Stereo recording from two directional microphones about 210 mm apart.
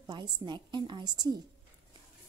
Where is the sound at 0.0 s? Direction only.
20° right (ahead or behind).